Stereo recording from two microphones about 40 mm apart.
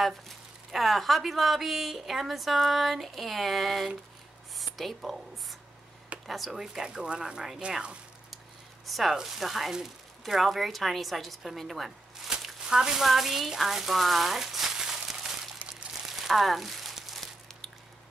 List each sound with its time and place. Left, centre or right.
0.7 s a woman's voice: centre
6.6 s speech: centre; by 7.8 s right
8.8 s a woman's voice: centre
12.6 s speech: centre
15.6 s crumpling: right
16.1 s crumpling: centre